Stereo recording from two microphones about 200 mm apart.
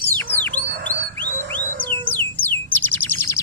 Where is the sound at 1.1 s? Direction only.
10° left (ahead or behind).